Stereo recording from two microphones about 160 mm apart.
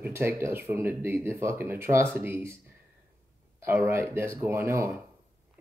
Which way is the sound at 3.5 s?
15° right (ahead or behind).